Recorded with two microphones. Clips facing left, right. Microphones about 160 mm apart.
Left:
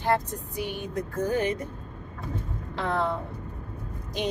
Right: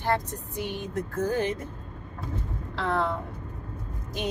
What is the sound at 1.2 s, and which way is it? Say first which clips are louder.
Speech: left 1 dB; 15° left (ahead or behind).